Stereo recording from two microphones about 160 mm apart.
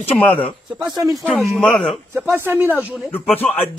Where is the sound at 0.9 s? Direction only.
20° right (ahead or behind).